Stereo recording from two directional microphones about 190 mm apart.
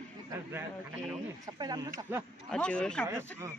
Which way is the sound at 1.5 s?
20° right (ahead or behind).